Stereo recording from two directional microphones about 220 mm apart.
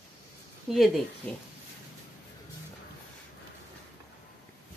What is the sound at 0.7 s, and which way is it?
Speech, centre (ahead or behind).